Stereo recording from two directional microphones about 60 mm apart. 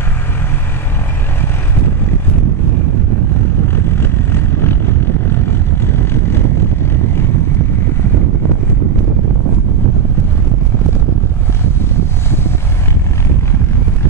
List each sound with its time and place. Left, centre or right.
3.6 s vehicle: left
11.8 s wind noise: left